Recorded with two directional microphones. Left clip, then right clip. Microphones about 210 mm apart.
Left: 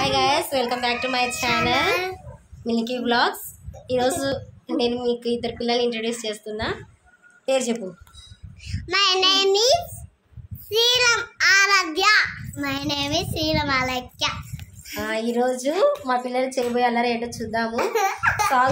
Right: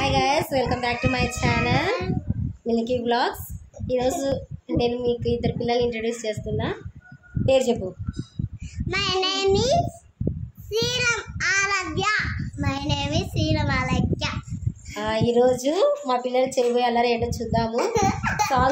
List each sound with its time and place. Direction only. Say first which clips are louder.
0.0 s a child's voice: left 1 dB; 15° right (ahead or behind)
3.8 s a child's voice: left 1 dB; 10° right (ahead or behind)
7.4 s a woman's voice: right 3 dB; 30° right (ahead or behind)
8.7 s child singing: left 4 dB; 5° left (ahead or behind)
10.7 s a child's voice: left 5 dB; 5° left (ahead or behind)
12.5 s child singing: left 2 dB; 5° right (ahead or behind)
15.0 s a woman's voice: right 3 dB; 30° right (ahead or behind)
17.7 s child singing: left 1 dB; centre (ahead or behind)